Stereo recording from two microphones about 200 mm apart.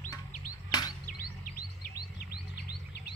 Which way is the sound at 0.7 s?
20° left (ahead or behind).